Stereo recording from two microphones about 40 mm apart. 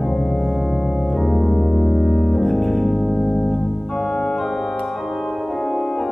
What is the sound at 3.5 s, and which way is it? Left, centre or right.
Organ, centre.